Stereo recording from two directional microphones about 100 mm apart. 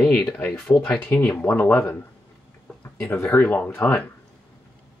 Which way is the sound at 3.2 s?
5° left (ahead or behind).